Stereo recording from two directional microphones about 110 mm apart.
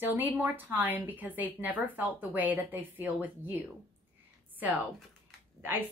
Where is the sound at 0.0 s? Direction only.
15° right (ahead or behind).